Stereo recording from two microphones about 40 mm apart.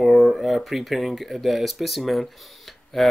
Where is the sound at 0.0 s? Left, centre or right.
Centre.